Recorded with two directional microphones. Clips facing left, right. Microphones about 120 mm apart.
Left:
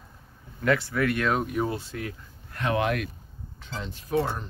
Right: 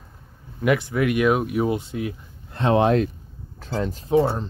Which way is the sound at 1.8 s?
20° right (ahead or behind).